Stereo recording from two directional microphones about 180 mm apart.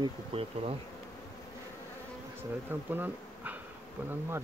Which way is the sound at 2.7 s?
10° right (ahead or behind).